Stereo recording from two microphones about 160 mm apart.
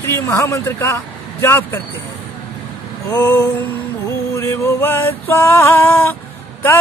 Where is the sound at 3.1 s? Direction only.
20° left (ahead or behind).